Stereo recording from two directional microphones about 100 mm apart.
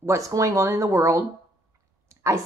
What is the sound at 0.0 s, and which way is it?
A woman's voice, 30° right (ahead or behind).